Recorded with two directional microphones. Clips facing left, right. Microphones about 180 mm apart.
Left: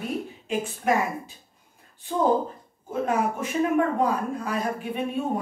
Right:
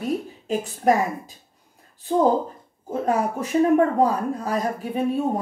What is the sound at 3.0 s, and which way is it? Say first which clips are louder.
A woman's voice: right 2 dB; 35° right (ahead or behind).